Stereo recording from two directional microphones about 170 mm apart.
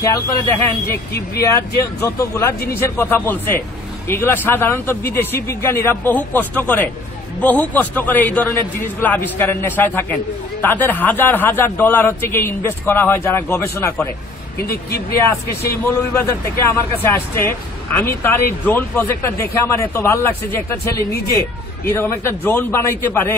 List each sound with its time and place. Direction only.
0.0 s a man's voice: 15° left (ahead or behind)
2.0 s a man's voice: 15° left (ahead or behind)
14.7 s speech: 65° left (ahead or behind)
15.8 s a man's voice: 15° left (ahead or behind)